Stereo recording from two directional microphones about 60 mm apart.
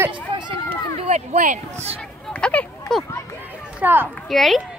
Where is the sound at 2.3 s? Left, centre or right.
Left.